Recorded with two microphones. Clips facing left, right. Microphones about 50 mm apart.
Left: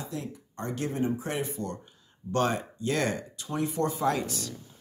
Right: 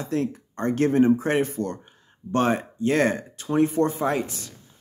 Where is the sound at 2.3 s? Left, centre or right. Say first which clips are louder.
Right 5 dB; right.